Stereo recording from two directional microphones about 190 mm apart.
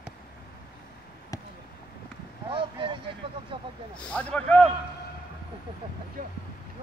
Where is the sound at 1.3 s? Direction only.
20° left (ahead or behind).